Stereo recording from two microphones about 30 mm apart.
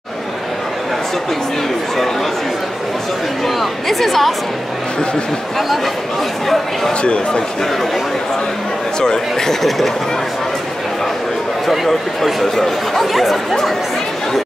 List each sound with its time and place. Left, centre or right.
3.4 s speech: centre
6.9 s speech: left
9.0 s speech: centre
9.6 s speech: centre
11.6 s speech: centre